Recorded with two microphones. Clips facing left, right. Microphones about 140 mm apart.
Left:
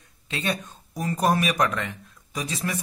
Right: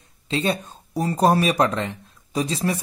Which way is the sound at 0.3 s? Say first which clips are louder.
Right 5 dB; 30° right (ahead or behind).